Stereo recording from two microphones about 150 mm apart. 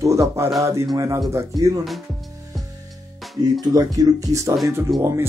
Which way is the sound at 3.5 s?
25° right (ahead or behind).